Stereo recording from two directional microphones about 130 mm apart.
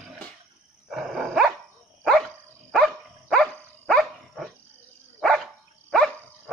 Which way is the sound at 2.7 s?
5° left (ahead or behind).